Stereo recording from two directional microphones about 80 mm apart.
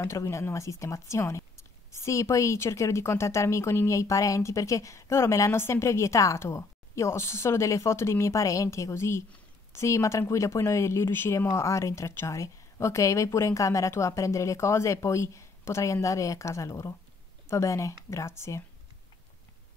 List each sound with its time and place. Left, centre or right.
0.0 s speech: left